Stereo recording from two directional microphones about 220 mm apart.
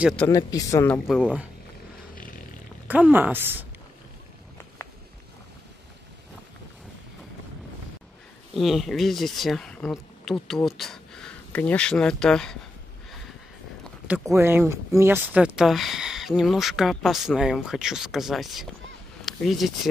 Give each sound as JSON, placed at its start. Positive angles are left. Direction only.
{"t": 0.0, "sound": "speech", "side_deg": 5}
{"t": 0.3, "sound": "a man's voice", "side_deg": 15}
{"t": 1.0, "sound": "speech", "side_deg": -5}
{"t": 2.9, "sound": "speech", "side_deg": -10}
{"t": 8.5, "sound": "speech", "side_deg": 0}
{"t": 14.0, "sound": "speech", "side_deg": -10}